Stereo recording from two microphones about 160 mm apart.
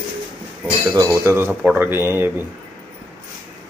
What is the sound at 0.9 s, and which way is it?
Speech, 15° right (ahead or behind).